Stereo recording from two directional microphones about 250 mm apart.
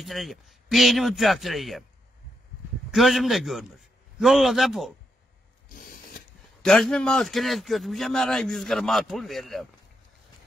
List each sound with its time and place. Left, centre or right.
0.0 s a man's voice: centre
2.9 s a man's voice: centre
5.7 s a sound: left
6.6 s a man's voice: centre